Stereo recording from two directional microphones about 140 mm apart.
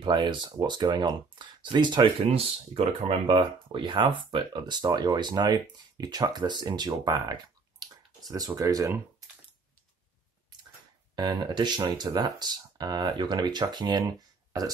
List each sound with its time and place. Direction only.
0.0 s speech: 35° right (ahead or behind)
2.2 s speech: 45° right (ahead or behind); by 8.9 s 25° right (ahead or behind)
11.1 s speech: 30° right (ahead or behind)